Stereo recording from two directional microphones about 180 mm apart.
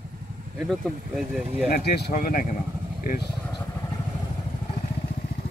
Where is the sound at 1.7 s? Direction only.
60° left (ahead or behind).